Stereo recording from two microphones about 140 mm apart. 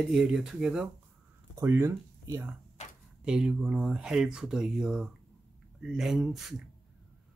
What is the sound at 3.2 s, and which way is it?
Speech, 5° right (ahead or behind).